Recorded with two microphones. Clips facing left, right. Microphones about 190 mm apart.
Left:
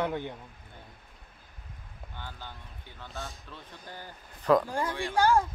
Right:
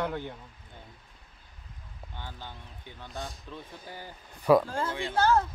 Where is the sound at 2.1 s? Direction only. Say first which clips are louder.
Right 1 dB; 15° right (ahead or behind).